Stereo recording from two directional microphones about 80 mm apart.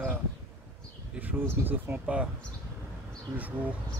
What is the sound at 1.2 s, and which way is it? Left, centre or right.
Speech, right.